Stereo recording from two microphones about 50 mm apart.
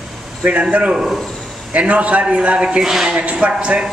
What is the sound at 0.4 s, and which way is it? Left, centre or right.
A man's voice, right.